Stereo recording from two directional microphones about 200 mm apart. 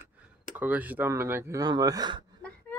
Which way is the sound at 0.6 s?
10° right (ahead or behind).